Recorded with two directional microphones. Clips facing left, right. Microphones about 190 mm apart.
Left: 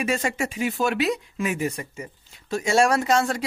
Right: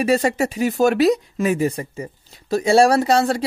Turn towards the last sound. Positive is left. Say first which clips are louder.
# right 5 dB
turn(degrees=-35)  # may be behind; listen again after turning